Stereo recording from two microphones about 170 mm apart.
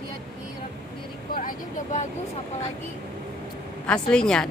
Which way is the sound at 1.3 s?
50° left (ahead or behind).